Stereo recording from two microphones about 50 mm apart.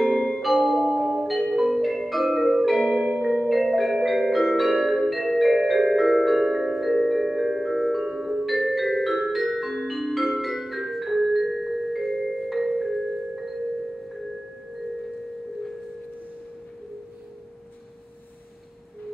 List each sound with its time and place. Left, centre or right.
0.4 s music: centre
3.1 s music: centre
3.4 s music: centre